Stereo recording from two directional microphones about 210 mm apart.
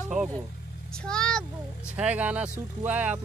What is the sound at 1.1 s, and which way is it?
A child's voice, 5° left (ahead or behind).